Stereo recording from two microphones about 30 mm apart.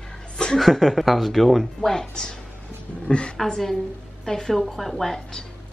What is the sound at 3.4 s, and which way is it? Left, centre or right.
Speech, centre.